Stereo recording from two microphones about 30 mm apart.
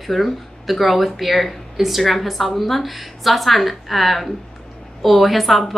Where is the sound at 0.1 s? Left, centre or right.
Centre.